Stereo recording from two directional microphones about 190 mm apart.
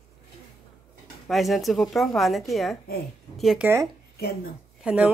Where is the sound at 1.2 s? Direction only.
Centre (ahead or behind).